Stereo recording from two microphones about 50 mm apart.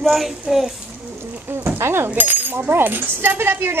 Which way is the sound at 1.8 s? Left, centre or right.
Right.